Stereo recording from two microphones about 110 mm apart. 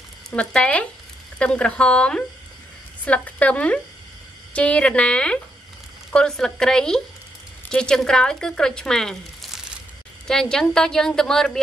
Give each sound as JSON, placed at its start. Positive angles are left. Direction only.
{"t": 0.3, "sound": "a woman's voice", "side_deg": 10}